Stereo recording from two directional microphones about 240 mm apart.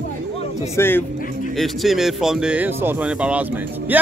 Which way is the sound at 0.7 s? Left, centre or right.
Centre.